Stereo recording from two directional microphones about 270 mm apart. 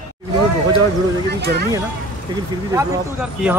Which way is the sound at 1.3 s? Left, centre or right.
Right.